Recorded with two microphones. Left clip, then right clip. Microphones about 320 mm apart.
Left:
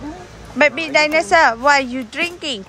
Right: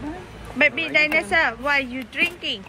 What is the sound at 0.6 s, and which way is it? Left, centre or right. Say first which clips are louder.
A woman's voice: left 4 dB; centre.